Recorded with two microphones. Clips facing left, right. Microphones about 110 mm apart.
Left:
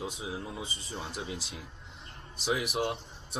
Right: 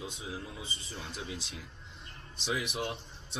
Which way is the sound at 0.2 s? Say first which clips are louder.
Left 4 dB; 25° left (ahead or behind).